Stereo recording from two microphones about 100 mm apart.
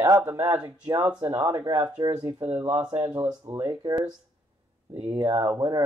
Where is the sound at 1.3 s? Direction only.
25° right (ahead or behind).